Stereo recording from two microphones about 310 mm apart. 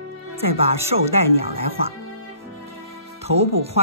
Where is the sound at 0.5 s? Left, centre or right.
Centre.